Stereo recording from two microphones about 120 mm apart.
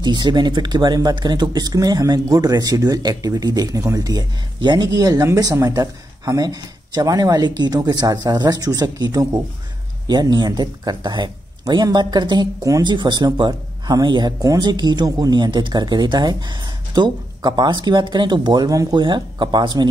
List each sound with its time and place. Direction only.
0.0 s speech: 40° right (ahead or behind)